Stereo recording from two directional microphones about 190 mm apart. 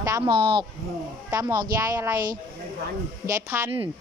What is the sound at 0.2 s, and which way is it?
A woman's voice, 25° right (ahead or behind).